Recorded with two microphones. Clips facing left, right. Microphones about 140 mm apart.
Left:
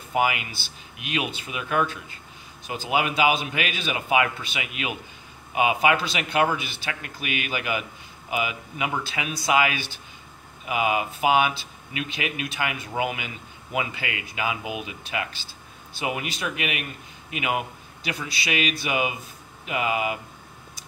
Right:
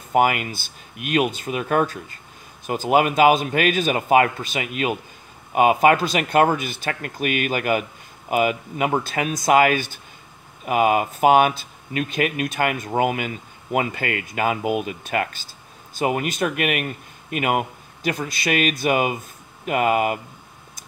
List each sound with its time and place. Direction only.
0.1 s a man's voice: 45° right (ahead or behind)